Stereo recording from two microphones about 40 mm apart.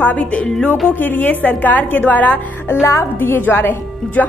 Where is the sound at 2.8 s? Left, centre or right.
Left.